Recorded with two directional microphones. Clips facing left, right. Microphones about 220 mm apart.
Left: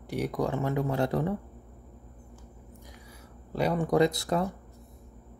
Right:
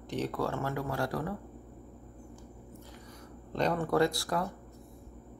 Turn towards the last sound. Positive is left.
turn(degrees=20)  # may be behind; listen again after turning